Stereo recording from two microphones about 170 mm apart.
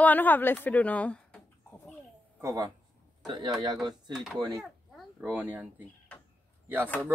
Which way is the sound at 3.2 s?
25° right (ahead or behind).